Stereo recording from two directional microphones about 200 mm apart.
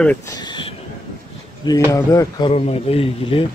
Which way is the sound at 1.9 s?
15° left (ahead or behind).